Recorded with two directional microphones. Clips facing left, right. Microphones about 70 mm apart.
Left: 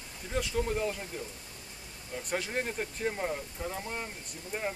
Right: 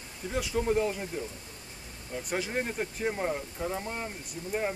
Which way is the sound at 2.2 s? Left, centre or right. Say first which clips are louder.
Right 1 dB; centre.